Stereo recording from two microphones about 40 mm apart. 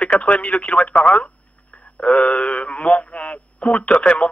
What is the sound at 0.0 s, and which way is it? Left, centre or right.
Speech, left.